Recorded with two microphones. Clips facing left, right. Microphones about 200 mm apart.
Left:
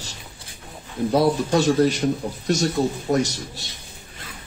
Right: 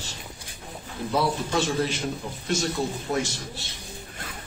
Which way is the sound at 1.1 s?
40° left (ahead or behind).